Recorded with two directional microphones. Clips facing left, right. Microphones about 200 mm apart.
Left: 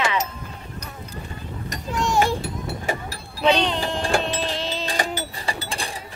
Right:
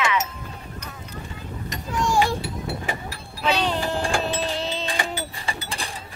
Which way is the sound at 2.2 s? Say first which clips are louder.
Left 1 dB; 45° left (ahead or behind).